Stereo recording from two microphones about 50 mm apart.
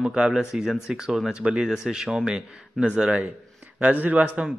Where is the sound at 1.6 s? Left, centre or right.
Centre.